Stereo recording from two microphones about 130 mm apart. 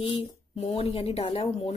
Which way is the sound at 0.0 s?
45° left (ahead or behind).